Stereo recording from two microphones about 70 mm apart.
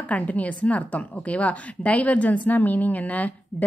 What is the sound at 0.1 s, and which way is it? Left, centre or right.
A woman's voice, left.